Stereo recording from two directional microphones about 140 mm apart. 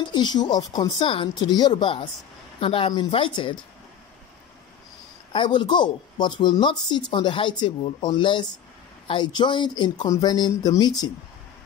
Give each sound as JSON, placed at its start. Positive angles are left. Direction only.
{"t": 0.0, "sound": "speech", "side_deg": 30}
{"t": 5.3, "sound": "speech", "side_deg": 35}